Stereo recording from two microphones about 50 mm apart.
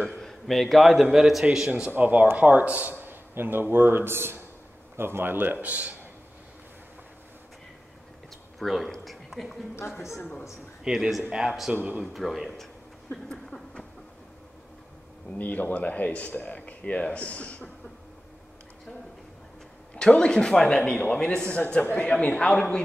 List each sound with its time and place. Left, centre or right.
0.2 s a man's voice: centre
1.9 s a man's voice: right
8.5 s speech: centre
10.8 s speech: centre
13.1 s a sound: centre
15.3 s speech: left
20.0 s speech: centre
20.8 s speech: left
22.5 s speech: centre